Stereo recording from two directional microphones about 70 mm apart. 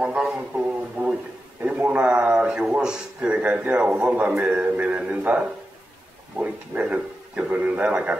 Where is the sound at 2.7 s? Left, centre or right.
Centre.